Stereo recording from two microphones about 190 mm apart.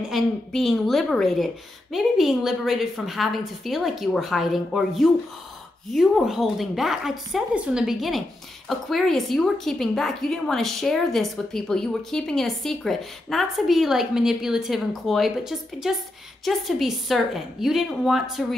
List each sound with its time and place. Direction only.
0.1 s a woman's voice: centre (ahead or behind)